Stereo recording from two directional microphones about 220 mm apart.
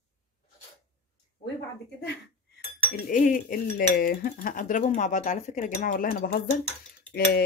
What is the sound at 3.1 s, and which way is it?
Speech, 35° left (ahead or behind).